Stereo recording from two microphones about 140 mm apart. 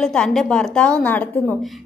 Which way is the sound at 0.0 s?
5° left (ahead or behind).